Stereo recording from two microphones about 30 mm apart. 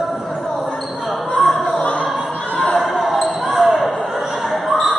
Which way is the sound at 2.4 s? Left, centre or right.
Left.